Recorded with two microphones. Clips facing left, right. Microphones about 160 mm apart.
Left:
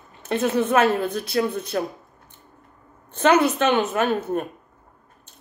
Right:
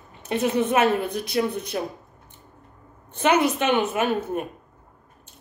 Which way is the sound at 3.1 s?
15° right (ahead or behind).